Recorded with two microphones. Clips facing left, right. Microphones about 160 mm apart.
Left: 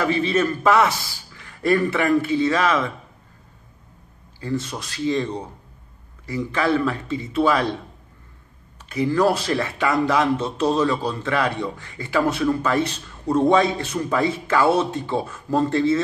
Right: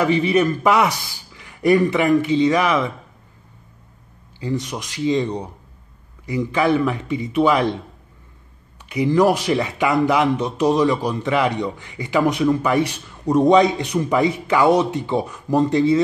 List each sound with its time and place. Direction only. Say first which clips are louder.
0.0 s speech: right 3 dB; 15° right (ahead or behind)
4.4 s speech: right 2 dB; 15° right (ahead or behind)
8.8 s speech: right 3 dB; 15° right (ahead or behind)